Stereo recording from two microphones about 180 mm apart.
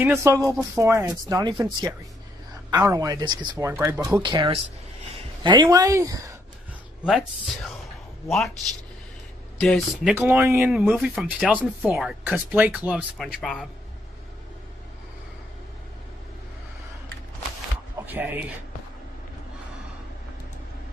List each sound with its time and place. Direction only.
0.0 s speech: 15° right (ahead or behind)
7.1 s speech: centre (ahead or behind)
9.6 s speech: centre (ahead or behind)
10.1 s speech: 15° right (ahead or behind); by 13.7 s centre (ahead or behind)
17.9 s a sound: 10° right (ahead or behind)